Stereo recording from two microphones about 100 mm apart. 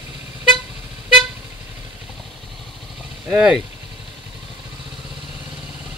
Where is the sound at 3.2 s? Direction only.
15° right (ahead or behind).